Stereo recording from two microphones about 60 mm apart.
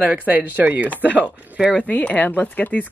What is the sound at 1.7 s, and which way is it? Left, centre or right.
Speech, left.